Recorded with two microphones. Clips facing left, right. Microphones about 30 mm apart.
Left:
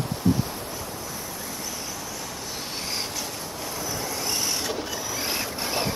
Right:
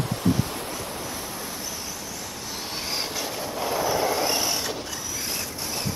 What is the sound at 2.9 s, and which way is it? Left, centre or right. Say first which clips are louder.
Vehicle: right 4 dB; right.